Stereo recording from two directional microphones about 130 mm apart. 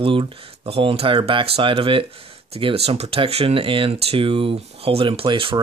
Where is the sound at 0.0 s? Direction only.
45° right (ahead or behind).